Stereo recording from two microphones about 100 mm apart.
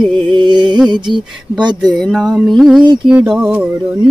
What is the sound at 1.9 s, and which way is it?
Mantra, centre (ahead or behind).